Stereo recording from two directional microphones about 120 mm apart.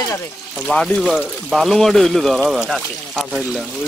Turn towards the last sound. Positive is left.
turn(degrees=0)  # may be behind; listen again after turning